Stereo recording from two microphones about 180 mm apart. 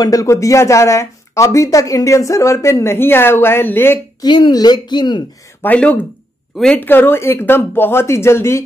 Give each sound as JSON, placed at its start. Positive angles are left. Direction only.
{"t": 0.0, "sound": "speech", "side_deg": 20}
{"t": 4.3, "sound": "speech", "side_deg": 25}
{"t": 5.6, "sound": "speech", "side_deg": 10}